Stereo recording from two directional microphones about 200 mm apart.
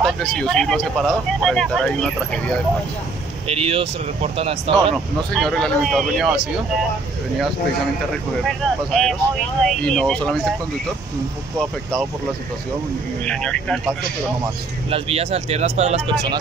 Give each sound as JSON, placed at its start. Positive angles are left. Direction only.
{"t": 0.0, "sound": "speech", "side_deg": 0}
{"t": 3.4, "sound": "speech", "side_deg": -30}
{"t": 4.9, "sound": "speech", "side_deg": 0}
{"t": 8.5, "sound": "speech", "side_deg": 0}
{"t": 13.2, "sound": "speech", "side_deg": 5}
{"t": 14.9, "sound": "speech", "side_deg": -30}